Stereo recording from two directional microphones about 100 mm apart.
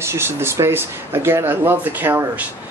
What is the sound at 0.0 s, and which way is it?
Speech, 25° right (ahead or behind).